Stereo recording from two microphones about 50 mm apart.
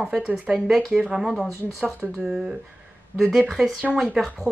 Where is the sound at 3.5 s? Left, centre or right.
Centre.